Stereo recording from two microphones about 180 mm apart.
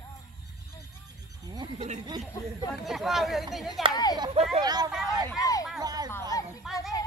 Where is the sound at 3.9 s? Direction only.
20° left (ahead or behind).